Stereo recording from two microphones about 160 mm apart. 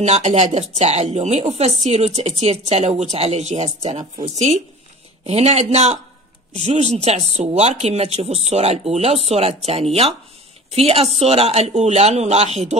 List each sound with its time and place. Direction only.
0.0 s speech: 45° right (ahead or behind)